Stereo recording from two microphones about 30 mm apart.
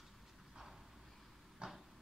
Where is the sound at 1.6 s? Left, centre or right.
Right.